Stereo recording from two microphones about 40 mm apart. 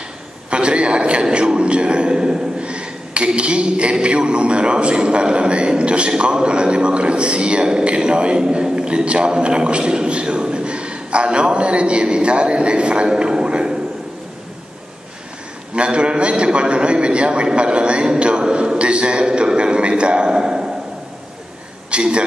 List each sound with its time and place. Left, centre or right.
0.5 s a man's voice: right
15.7 s a man's voice: right
21.9 s speech: right